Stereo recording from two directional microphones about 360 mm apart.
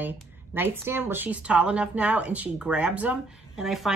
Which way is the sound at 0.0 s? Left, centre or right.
Centre.